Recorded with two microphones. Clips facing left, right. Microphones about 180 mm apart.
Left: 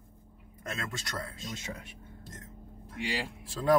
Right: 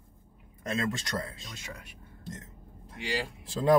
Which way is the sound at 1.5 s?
25° left (ahead or behind).